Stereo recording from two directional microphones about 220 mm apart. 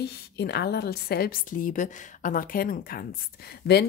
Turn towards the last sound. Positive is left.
turn(degrees=45)  # may be behind; listen again after turning